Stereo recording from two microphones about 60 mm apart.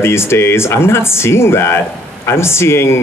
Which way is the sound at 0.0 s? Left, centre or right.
Left.